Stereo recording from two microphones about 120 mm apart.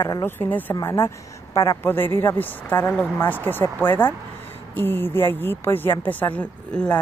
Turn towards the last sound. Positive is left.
turn(degrees=10)  # may be behind; listen again after turning